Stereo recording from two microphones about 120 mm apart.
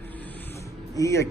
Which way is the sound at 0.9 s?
25° left (ahead or behind).